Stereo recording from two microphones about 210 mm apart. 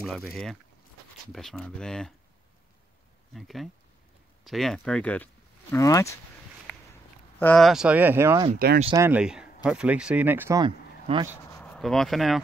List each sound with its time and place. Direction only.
0.0 s speech: 5° left (ahead or behind)
3.3 s speech: centre (ahead or behind); by 6.1 s 15° left (ahead or behind)
7.3 s speech: 5° left (ahead or behind); by 8.5 s 10° right (ahead or behind)
8.5 s speech: 45° right (ahead or behind)
8.9 s speech: 10° right (ahead or behind)
10.6 s speech: 20° right (ahead or behind)
11.5 s speech: 5° left (ahead or behind)